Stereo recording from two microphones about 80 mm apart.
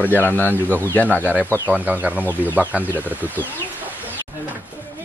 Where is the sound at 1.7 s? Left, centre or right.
Centre.